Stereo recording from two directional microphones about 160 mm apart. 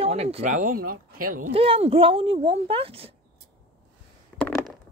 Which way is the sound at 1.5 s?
35° right (ahead or behind).